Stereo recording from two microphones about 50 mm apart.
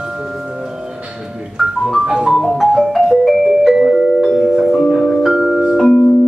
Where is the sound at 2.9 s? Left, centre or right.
Centre.